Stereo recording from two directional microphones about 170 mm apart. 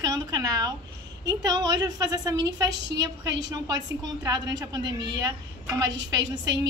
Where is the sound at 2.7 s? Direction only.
90° right.